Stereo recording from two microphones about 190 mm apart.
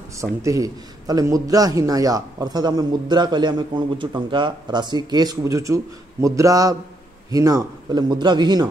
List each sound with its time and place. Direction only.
0.2 s a man's voice: 15° right (ahead or behind)